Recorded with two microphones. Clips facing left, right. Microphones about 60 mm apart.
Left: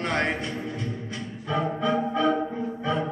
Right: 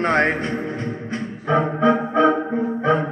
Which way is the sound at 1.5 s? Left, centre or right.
Right.